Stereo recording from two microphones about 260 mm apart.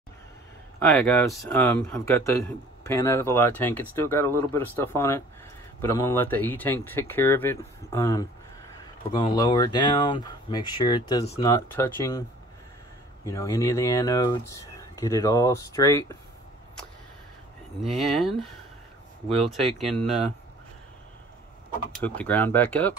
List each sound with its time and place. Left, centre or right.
0.8 s speech: centre
13.2 s speech: centre
17.8 s speech: centre
19.5 s speech: centre
22.0 s speech: centre